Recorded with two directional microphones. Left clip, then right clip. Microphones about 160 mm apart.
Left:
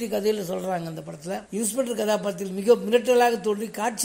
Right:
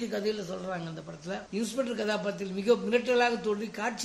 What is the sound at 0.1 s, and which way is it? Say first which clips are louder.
A man's voice: left 9 dB; 40° left (ahead or behind).